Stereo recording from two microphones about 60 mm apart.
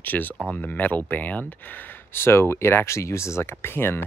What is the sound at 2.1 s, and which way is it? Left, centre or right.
Speech, left.